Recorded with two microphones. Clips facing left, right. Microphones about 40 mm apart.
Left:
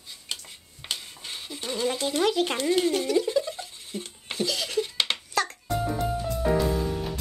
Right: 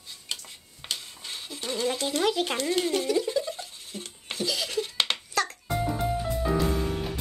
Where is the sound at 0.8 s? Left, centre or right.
Centre.